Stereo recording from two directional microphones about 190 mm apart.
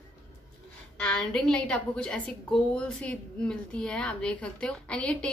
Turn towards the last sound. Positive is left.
turn(degrees=5)  # may be behind; listen again after turning